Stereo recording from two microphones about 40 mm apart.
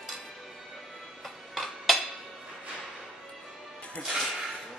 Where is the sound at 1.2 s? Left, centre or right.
Centre.